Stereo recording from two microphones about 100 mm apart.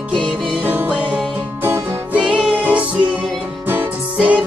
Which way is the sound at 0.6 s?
15° right (ahead or behind).